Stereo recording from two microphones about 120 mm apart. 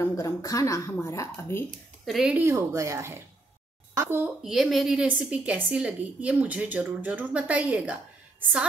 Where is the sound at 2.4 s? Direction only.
20° right (ahead or behind).